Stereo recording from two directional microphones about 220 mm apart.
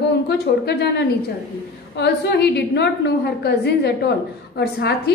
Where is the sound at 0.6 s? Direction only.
50° left (ahead or behind).